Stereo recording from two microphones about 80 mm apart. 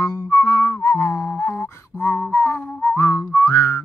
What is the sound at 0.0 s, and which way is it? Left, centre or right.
Music, left.